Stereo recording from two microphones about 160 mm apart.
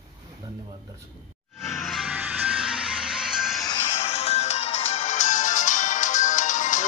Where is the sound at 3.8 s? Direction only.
40° left (ahead or behind).